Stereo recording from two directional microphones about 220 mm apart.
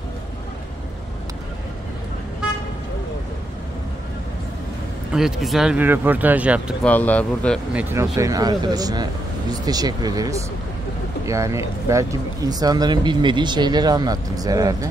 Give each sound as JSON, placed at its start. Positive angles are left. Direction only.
{"t": 5.1, "sound": "speech", "side_deg": 0}
{"t": 6.8, "sound": "speech", "side_deg": 5}
{"t": 7.7, "sound": "speech", "side_deg": -10}